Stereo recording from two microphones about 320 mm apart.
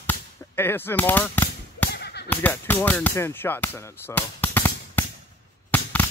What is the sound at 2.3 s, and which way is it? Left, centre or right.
Speech, centre.